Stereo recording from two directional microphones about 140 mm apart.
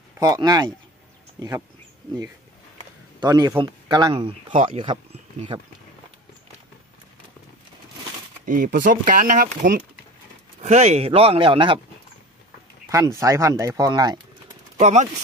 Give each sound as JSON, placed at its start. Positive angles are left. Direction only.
{"t": 0.2, "sound": "speech", "side_deg": -30}
{"t": 3.2, "sound": "speech", "side_deg": -30}
{"t": 8.5, "sound": "speech", "side_deg": -75}
{"t": 10.6, "sound": "speech", "side_deg": -55}
{"t": 12.9, "sound": "speech", "side_deg": -20}
{"t": 14.8, "sound": "speech", "side_deg": -55}